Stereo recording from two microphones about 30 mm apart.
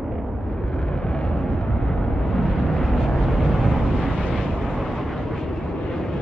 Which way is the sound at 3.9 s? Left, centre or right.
Centre.